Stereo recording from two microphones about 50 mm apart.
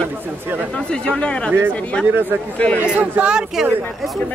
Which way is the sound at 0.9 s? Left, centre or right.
Centre.